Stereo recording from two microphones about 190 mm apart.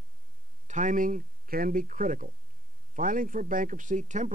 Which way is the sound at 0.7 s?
40° right (ahead or behind).